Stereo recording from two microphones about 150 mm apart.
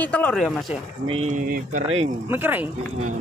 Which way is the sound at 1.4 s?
70° right (ahead or behind).